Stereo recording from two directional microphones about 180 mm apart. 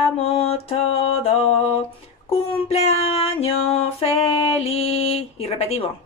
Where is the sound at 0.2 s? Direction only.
30° left (ahead or behind).